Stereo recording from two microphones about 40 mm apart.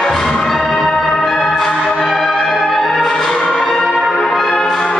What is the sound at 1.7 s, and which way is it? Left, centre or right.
Music, left.